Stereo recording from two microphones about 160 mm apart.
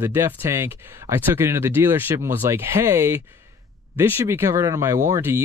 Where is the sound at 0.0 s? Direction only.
15° right (ahead or behind).